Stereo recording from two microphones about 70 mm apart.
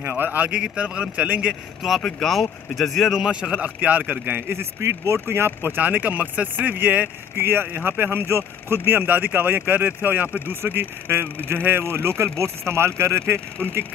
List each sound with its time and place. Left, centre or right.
0.0 s speech: right
1.8 s speech: centre; by 13.2 s right